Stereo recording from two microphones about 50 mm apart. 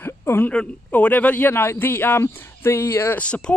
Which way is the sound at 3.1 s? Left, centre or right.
Left.